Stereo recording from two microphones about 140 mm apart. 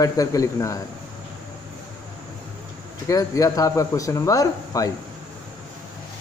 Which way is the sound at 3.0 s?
25° left (ahead or behind).